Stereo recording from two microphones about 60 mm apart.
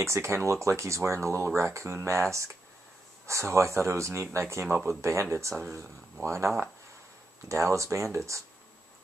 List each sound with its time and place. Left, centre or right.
0.0 s speech: right
3.3 s speech: right